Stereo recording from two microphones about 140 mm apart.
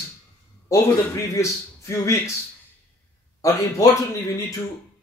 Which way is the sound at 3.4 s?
25° left (ahead or behind).